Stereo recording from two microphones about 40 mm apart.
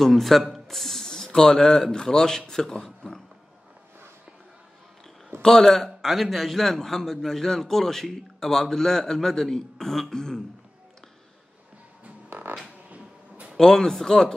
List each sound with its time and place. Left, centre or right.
0.0 s speech: centre
5.4 s a man's voice: centre
12.3 s music: right
13.6 s a man's voice: centre